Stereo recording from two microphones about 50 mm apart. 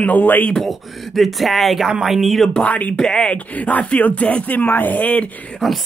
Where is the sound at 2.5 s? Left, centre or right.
Left.